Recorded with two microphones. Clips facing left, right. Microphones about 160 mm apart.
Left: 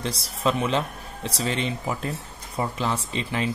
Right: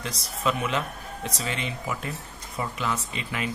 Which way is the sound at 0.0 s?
30° left (ahead or behind).